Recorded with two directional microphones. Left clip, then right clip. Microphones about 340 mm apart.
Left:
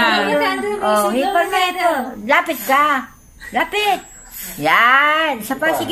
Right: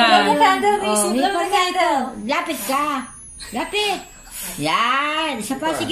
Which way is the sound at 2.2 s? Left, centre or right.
Left.